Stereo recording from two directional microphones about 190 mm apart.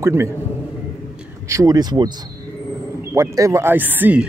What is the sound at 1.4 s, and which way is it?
A man's voice, 15° right (ahead or behind).